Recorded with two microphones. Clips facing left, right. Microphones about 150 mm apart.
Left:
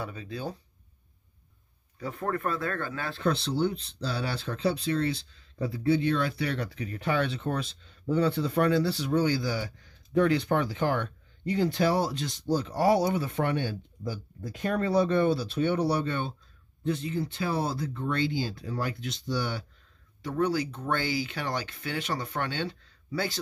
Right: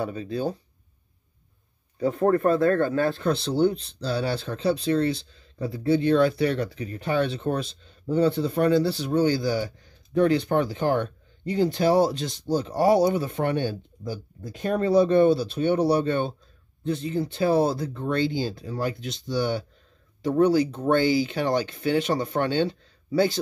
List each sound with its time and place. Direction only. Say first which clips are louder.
0.0 s speech: right 8 dB; 35° right (ahead or behind)
2.0 s speech: right 10 dB; 35° right (ahead or behind)
12.8 s speech: right 5 dB; 40° right (ahead or behind)